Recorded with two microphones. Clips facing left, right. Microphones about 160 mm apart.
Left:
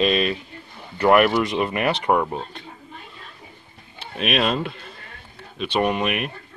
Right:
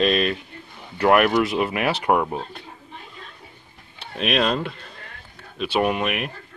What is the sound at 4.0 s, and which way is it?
Speech, centre (ahead or behind).